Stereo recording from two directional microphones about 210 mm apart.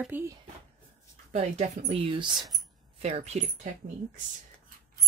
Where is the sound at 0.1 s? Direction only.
10° right (ahead or behind).